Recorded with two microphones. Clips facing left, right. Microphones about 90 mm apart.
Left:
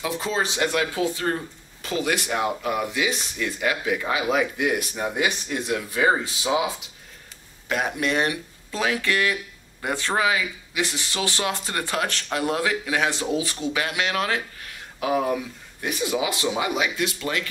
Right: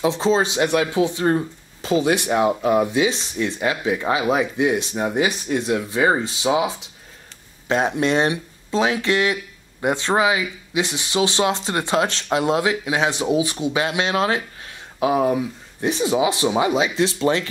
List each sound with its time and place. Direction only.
0.0 s speech: 25° right (ahead or behind)